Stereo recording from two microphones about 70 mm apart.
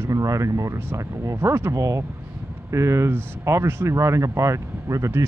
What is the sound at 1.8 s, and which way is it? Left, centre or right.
Speech, right.